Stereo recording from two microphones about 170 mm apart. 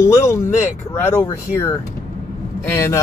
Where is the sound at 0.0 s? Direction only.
15° left (ahead or behind).